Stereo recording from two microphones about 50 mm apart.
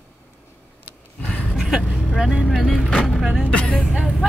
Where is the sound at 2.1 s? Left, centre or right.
Centre.